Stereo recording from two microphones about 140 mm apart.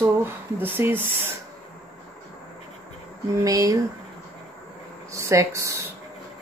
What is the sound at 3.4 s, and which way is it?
Speech, 25° right (ahead or behind).